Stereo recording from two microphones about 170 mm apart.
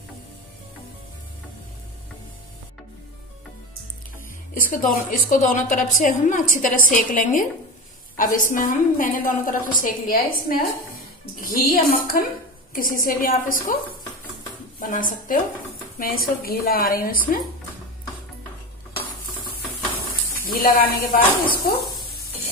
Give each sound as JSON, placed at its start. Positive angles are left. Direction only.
{"t": 4.6, "sound": "a woman's voice", "side_deg": 55}
{"t": 11.7, "sound": "speech", "side_deg": 60}
{"t": 14.8, "sound": "a woman's voice", "side_deg": 55}
{"t": 20.4, "sound": "speech", "side_deg": 60}